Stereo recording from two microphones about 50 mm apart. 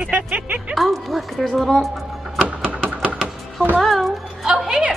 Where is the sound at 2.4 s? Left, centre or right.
Right.